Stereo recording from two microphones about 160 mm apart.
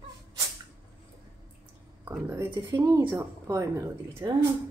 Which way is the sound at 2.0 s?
15° right (ahead or behind).